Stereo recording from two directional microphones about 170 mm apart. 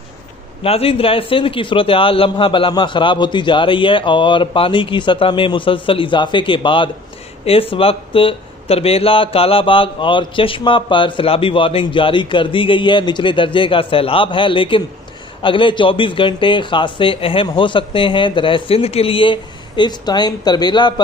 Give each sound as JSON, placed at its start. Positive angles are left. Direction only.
{"t": 0.7, "sound": "a man's voice", "side_deg": 35}